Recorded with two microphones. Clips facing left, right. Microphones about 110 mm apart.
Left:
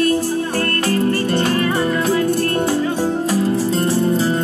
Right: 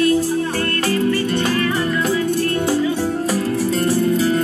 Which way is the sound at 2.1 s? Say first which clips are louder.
Left 2 dB; 45° left (ahead or behind).